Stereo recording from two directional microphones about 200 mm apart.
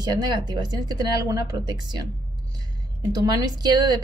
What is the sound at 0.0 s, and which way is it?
A woman's voice, 20° right (ahead or behind).